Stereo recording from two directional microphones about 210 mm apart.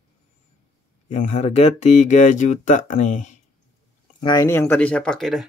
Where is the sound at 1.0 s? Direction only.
35° left (ahead or behind).